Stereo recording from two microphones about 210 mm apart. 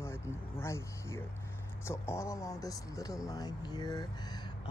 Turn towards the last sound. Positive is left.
turn(degrees=20)  # may be behind; listen again after turning